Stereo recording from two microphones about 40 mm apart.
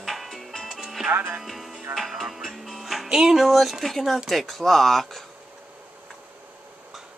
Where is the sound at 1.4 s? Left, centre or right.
Centre.